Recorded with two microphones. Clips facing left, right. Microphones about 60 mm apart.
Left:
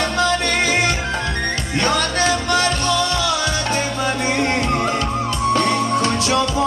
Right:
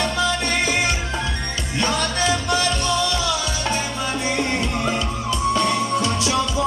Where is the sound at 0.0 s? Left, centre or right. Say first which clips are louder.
Left 3 dB; left.